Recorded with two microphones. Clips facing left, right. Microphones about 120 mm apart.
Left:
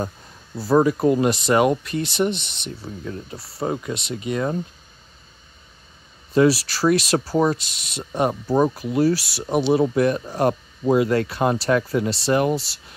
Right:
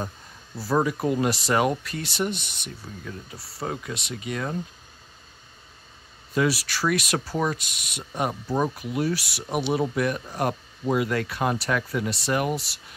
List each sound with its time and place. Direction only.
0.6 s speech: 25° left (ahead or behind)
6.3 s speech: 30° left (ahead or behind)